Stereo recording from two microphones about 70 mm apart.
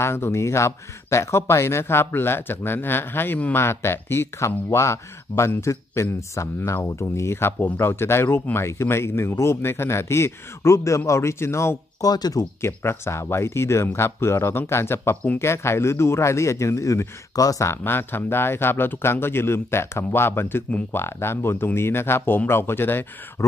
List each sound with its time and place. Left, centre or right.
0.0 s speech: left
12.0 s speech: left
12.4 s speech: left
17.6 s speech: left